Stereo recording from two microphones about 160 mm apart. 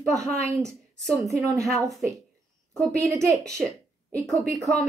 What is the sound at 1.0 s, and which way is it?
Speech, centre (ahead or behind).